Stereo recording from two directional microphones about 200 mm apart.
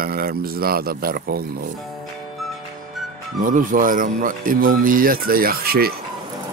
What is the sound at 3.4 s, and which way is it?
Speech, 40° right (ahead or behind).